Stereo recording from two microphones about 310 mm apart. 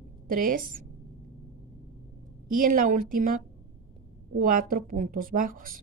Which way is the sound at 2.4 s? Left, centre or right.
Right.